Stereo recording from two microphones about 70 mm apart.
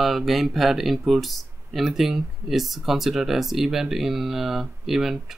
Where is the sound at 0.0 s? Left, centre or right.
Centre.